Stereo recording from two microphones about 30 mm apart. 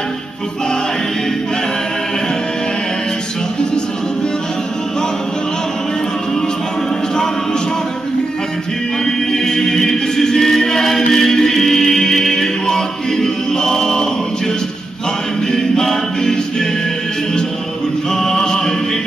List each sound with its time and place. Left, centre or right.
9.0 s choir: centre
15.4 s a capella: centre
18.1 s music: centre